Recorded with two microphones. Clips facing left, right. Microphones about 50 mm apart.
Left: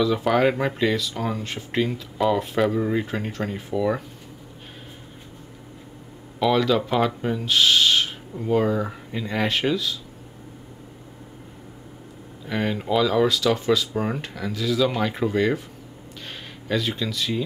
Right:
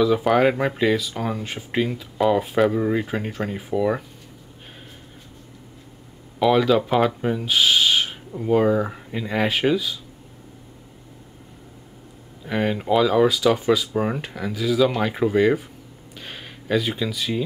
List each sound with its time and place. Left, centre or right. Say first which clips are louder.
0.0 s speech: right 2 dB; centre
6.4 s speech: right 3 dB; centre
12.4 s speech: right 3 dB; centre
16.3 s a sound: right 3 dB; centre